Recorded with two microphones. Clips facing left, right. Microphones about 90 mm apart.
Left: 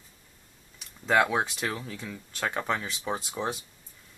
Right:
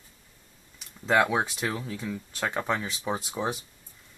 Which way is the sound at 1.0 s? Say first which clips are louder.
Right 1 dB; centre (ahead or behind).